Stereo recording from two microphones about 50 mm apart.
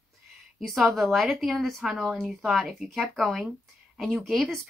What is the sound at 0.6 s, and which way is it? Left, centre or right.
A woman's voice, centre.